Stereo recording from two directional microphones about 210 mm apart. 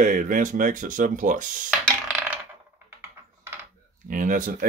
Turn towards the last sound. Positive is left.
turn(degrees=-40)  # may be behind; listen again after turning